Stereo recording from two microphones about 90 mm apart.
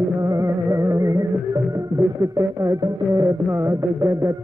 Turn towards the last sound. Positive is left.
turn(degrees=-35)  # may be behind; listen again after turning